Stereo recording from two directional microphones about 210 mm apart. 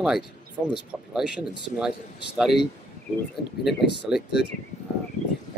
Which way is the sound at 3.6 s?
Centre (ahead or behind).